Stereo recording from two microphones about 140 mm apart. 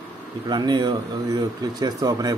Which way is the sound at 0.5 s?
30° right (ahead or behind).